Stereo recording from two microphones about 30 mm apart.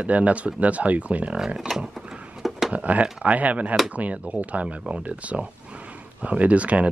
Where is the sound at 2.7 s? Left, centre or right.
Right.